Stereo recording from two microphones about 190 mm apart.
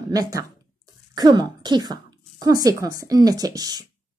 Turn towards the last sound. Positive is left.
turn(degrees=-20)  # may be behind; listen again after turning